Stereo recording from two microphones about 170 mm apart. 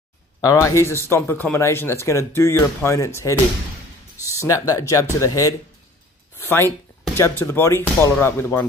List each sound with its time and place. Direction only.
0.4 s speech: 20° left (ahead or behind)
4.4 s speech: 20° left (ahead or behind)
6.3 s a sound: 15° left (ahead or behind)
7.2 s speech: 15° left (ahead or behind)